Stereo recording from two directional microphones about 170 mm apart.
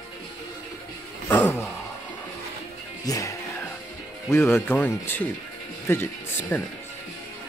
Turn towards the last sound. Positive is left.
turn(degrees=10)  # may be behind; listen again after turning